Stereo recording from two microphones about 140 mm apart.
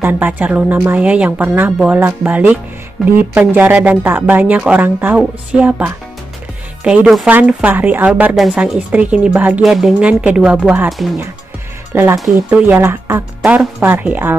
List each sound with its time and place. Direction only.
0.0 s a woman's voice: 15° right (ahead or behind)
11.9 s a woman's voice: 15° right (ahead or behind)
13.4 s speech: 5° right (ahead or behind)
13.7 s a woman's voice: 15° right (ahead or behind)